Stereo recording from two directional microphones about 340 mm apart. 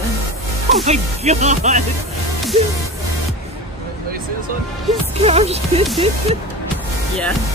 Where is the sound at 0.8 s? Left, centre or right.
Centre.